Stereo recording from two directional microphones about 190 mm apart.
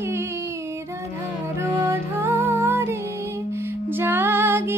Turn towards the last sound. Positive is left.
turn(degrees=-10)  # may be behind; listen again after turning